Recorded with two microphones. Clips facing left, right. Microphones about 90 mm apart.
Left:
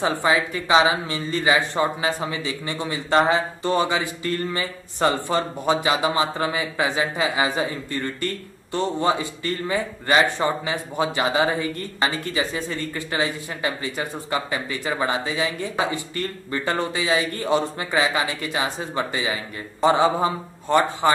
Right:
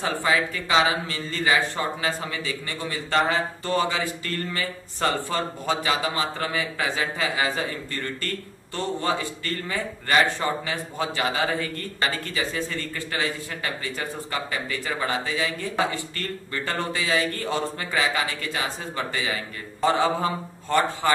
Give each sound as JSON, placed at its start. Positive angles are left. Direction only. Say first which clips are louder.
{"t": 0.0, "sound": "a man's voice", "louder": "left 3 dB", "side_deg": 20}